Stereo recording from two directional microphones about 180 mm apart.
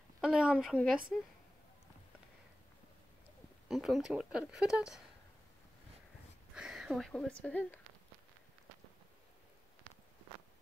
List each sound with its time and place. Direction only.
0.2 s speech: 5° right (ahead or behind)
3.6 s speech: centre (ahead or behind)
6.5 s speech: 5° right (ahead or behind)